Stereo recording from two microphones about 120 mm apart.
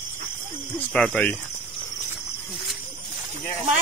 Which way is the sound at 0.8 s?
5° left (ahead or behind).